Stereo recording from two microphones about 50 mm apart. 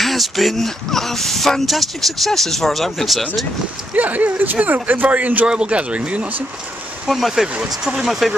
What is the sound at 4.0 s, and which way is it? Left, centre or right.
Speech, right.